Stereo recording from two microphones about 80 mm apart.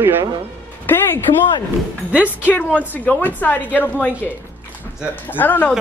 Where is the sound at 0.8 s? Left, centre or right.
Left.